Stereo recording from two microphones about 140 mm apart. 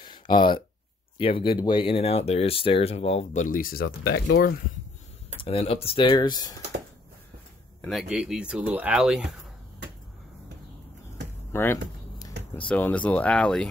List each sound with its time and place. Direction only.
0.0 s a sound: 35° left (ahead or behind)
1.1 s speech: 40° left (ahead or behind)
3.4 s speech: 85° left
5.4 s speech: 45° left (ahead or behind)
7.9 s speech: 5° right (ahead or behind)
11.5 s a sound: 20° left (ahead or behind)
12.5 s speech: 10° left (ahead or behind)